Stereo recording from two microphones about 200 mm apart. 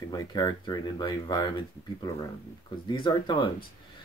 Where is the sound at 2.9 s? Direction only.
25° left (ahead or behind).